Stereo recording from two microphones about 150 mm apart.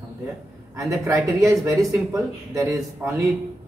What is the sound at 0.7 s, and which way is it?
Speech, 20° right (ahead or behind).